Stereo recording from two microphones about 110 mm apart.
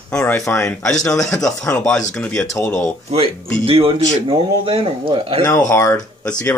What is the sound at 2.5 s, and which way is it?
Speech, 30° left (ahead or behind).